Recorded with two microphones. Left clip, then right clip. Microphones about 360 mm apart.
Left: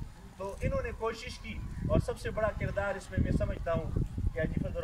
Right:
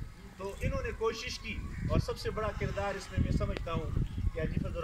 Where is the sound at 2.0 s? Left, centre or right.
Left.